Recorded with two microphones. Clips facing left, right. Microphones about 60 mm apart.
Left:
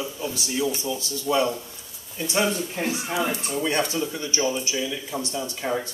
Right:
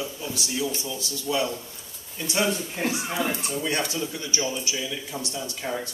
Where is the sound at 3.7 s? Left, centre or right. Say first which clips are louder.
Left 3 dB; left.